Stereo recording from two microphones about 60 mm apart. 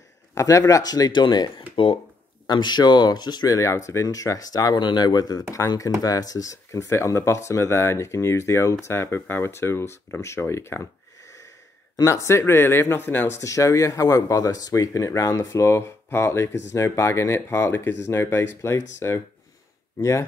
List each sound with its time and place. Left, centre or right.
0.3 s speech: left
3.1 s speech: left
5.6 s speech: left
12.0 s speech: left
13.4 s speech: left
14.7 s speech: left